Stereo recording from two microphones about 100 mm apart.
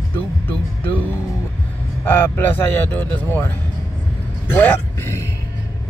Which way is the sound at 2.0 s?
15° left (ahead or behind).